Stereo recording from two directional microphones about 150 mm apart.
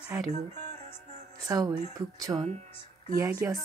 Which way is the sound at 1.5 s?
25° right (ahead or behind).